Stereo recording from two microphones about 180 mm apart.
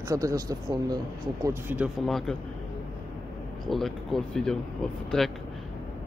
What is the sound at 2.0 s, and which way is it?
Speech, centre (ahead or behind).